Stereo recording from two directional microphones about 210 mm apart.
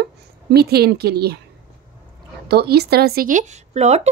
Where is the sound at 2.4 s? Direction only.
50° right (ahead or behind); by 4.1 s 30° right (ahead or behind).